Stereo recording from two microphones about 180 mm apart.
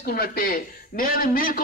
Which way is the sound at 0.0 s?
60° left (ahead or behind).